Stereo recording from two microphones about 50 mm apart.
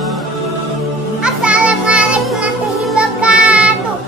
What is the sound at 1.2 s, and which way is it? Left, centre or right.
Music, centre.